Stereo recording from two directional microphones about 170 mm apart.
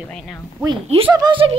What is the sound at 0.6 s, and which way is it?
Speech, 30° right (ahead or behind).